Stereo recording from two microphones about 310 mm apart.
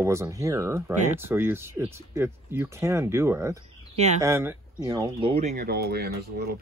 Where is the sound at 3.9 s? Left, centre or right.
Right.